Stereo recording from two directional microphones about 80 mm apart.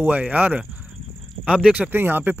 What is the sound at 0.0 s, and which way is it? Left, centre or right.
Speech, right.